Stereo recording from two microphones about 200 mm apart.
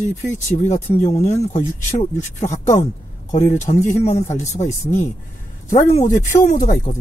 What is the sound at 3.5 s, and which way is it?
Speech, 35° left (ahead or behind).